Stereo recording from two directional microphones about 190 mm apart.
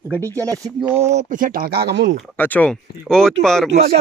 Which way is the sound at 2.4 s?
10° left (ahead or behind).